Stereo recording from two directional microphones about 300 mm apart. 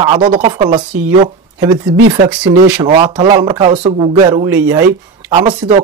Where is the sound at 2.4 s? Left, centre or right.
Centre.